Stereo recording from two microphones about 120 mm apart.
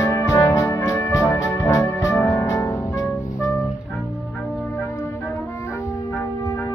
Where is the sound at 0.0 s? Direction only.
25° left (ahead or behind).